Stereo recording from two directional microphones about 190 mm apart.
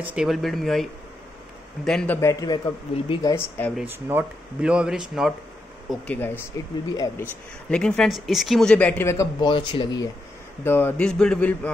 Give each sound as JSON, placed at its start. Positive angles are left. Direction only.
{"t": 0.0, "sound": "speech", "side_deg": -5}
{"t": 1.9, "sound": "speech", "side_deg": 5}
{"t": 2.1, "sound": "a man's voice", "side_deg": 20}
{"t": 3.7, "sound": "speech", "side_deg": -10}
{"t": 5.9, "sound": "a man's voice", "side_deg": 10}
{"t": 7.7, "sound": "speech", "side_deg": 5}
{"t": 10.6, "sound": "speech", "side_deg": 10}